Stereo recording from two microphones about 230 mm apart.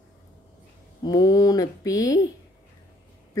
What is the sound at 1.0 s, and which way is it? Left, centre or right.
Speech, centre.